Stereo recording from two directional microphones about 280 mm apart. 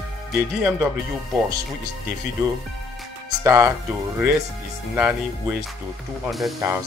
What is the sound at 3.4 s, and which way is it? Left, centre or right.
Speech, centre.